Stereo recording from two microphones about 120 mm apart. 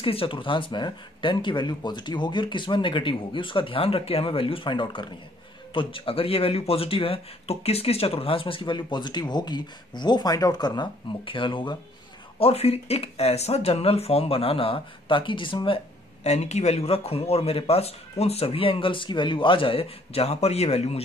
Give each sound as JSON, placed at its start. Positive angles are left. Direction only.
{"t": 0.0, "sound": "speech", "side_deg": 50}
{"t": 12.4, "sound": "speech", "side_deg": 55}
{"t": 16.3, "sound": "speech", "side_deg": 65}